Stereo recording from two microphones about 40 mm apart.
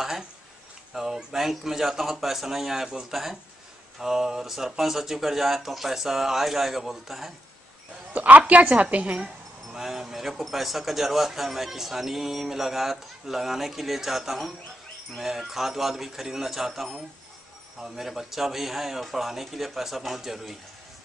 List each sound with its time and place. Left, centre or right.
0.9 s speech: centre
8.1 s a woman's voice: right
9.2 s speech: centre